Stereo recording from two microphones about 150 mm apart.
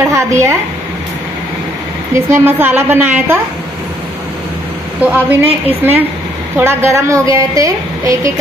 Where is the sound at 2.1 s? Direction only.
15° right (ahead or behind).